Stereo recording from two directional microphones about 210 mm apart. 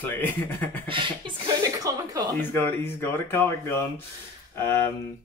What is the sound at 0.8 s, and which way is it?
Music, 25° right (ahead or behind).